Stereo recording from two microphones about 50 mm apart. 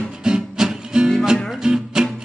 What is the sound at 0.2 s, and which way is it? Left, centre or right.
Music, centre.